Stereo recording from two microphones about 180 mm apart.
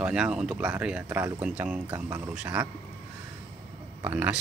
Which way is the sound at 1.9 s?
15° right (ahead or behind).